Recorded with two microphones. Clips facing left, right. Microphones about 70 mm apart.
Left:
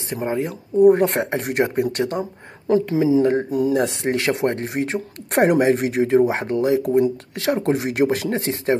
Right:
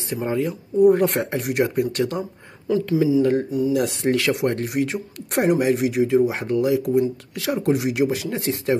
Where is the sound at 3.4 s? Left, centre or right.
Left.